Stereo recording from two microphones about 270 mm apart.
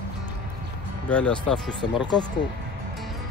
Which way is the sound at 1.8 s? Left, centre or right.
Centre.